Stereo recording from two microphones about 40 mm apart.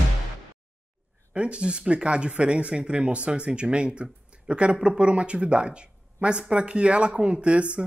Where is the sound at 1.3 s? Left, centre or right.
Right.